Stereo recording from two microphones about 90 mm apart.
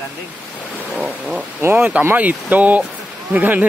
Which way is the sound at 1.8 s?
15° right (ahead or behind).